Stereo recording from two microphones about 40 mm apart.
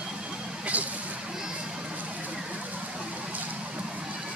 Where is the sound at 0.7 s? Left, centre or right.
Right.